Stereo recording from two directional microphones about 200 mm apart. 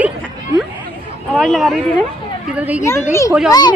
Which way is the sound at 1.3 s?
Centre (ahead or behind).